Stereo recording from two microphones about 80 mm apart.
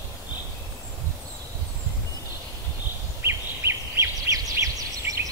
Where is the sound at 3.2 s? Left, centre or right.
Right.